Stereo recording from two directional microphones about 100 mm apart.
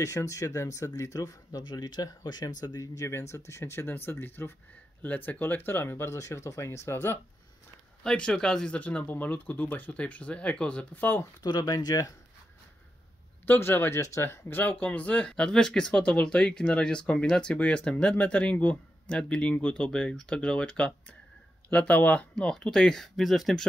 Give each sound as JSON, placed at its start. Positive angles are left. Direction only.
{"t": 0.0, "sound": "speech", "side_deg": 30}
{"t": 8.0, "sound": "speech", "side_deg": 5}
{"t": 11.4, "sound": "speech", "side_deg": 40}
{"t": 13.5, "sound": "speech", "side_deg": 20}